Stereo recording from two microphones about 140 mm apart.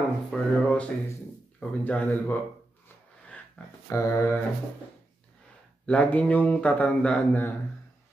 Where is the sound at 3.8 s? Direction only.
20° left (ahead or behind).